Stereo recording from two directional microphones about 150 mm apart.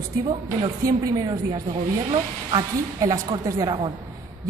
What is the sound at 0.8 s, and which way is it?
A woman's voice, 20° right (ahead or behind).